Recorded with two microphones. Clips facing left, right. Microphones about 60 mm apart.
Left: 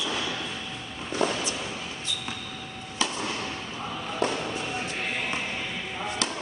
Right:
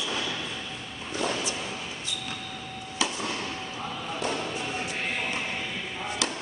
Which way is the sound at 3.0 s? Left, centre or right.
Centre.